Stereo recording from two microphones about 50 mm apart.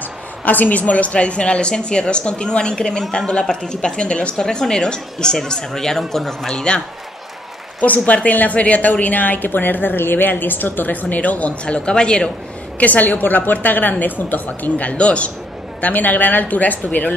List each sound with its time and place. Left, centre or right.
0.5 s a woman's voice: left; by 6.8 s centre
7.8 s a woman's voice: left
12.7 s a woman's voice: left